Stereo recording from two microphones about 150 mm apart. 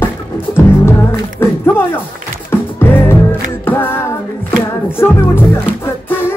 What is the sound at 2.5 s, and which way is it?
Music, 15° left (ahead or behind).